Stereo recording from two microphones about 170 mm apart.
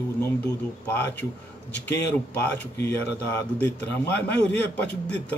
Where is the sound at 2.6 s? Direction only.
10° left (ahead or behind).